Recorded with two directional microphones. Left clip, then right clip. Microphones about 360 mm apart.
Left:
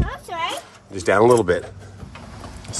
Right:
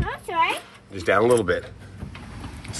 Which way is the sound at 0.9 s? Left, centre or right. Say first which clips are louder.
Left 4 dB; centre.